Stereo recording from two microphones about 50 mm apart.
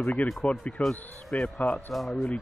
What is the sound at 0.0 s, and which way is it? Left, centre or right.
Speech, left.